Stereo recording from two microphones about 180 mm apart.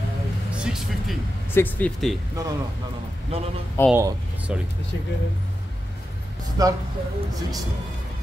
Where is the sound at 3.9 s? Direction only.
15° right (ahead or behind).